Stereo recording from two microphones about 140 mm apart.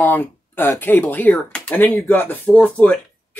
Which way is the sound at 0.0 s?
15° left (ahead or behind).